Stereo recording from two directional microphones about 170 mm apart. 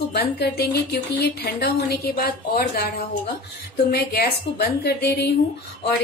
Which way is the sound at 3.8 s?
70° left (ahead or behind).